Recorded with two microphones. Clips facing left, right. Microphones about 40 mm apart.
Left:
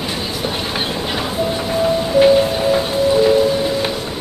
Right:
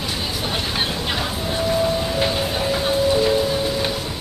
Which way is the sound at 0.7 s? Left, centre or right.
Centre.